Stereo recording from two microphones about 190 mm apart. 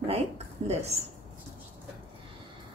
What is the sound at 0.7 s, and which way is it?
Speech, 35° right (ahead or behind).